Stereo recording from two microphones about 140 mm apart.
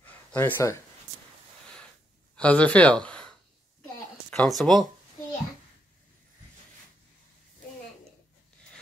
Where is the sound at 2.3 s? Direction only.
10° left (ahead or behind).